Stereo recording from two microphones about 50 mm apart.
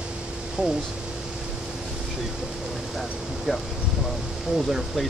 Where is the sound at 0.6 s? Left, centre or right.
Right.